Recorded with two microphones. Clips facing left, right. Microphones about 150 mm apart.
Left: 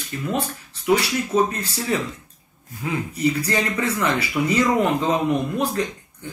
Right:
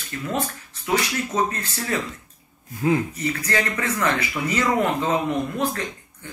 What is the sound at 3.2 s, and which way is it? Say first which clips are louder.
Speech: left 3 dB; 15° left (ahead or behind).